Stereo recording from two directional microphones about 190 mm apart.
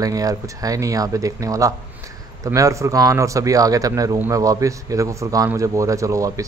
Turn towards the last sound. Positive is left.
turn(degrees=-15)  # may be behind; listen again after turning